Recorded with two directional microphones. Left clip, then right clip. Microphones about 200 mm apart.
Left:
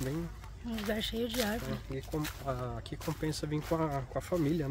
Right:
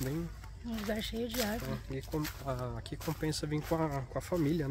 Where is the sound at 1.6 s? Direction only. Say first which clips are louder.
Left 1 dB; 20° right (ahead or behind).